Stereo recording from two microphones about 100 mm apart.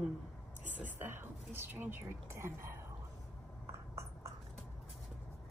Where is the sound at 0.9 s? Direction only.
20° right (ahead or behind).